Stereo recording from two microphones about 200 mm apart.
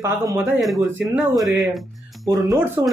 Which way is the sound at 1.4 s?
Centre (ahead or behind).